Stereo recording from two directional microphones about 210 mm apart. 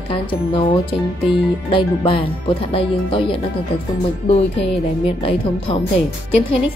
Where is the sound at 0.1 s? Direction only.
25° left (ahead or behind).